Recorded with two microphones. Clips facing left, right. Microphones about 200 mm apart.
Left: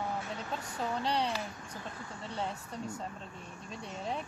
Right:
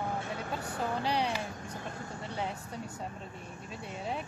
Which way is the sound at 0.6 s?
55° right (ahead or behind).